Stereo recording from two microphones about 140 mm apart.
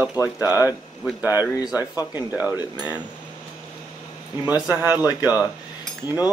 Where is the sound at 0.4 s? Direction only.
10° right (ahead or behind).